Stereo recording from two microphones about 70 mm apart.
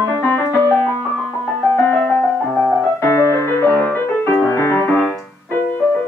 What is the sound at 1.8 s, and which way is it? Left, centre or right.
Music, left.